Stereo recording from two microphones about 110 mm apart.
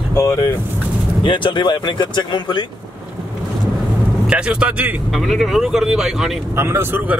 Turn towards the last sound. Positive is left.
turn(degrees=-25)  # may be behind; listen again after turning